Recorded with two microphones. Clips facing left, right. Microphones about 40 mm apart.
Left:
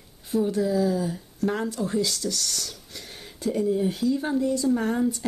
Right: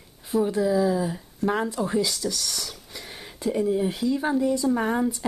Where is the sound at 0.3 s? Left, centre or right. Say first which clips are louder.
Right 1 dB; centre.